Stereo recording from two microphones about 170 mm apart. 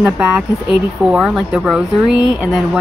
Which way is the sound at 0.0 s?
5° right (ahead or behind).